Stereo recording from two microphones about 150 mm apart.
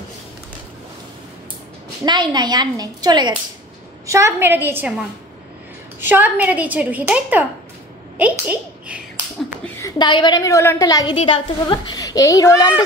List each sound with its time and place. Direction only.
2.0 s a woman's voice: 30° right (ahead or behind)
4.1 s a child's voice: 15° right (ahead or behind)
9.8 s a sound: 20° left (ahead or behind)
10.0 s a woman's voice: 30° left (ahead or behind)
11.1 s a woman's voice: 40° left (ahead or behind); by 12.7 s 20° left (ahead or behind)